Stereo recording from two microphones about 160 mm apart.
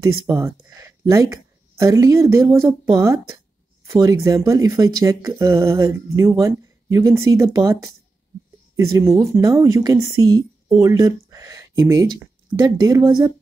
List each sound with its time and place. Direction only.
0.0 s speech: 20° right (ahead or behind)